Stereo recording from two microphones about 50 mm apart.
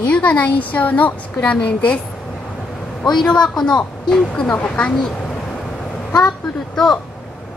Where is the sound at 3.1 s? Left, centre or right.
Centre.